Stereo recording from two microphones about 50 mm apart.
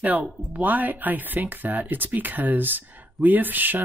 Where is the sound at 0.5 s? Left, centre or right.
Right.